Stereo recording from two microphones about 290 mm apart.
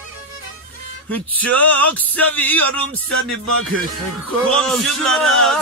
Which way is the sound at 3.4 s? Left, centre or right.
Right.